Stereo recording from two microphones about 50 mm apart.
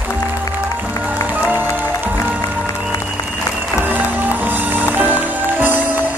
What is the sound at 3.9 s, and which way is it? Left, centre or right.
Music, right.